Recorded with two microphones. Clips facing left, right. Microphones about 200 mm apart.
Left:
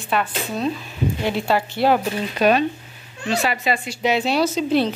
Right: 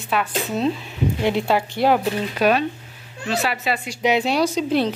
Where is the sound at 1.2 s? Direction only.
20° right (ahead or behind).